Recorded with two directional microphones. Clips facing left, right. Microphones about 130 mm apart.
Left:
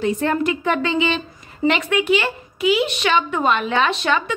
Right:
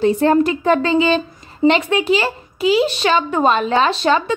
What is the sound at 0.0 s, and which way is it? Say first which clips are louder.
A woman's voice: right 6 dB; 35° right (ahead or behind).